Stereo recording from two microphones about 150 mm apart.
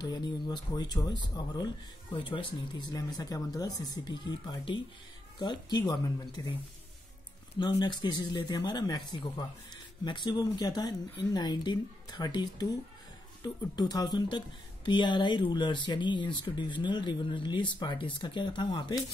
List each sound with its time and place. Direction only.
0.0 s speech: 30° left (ahead or behind)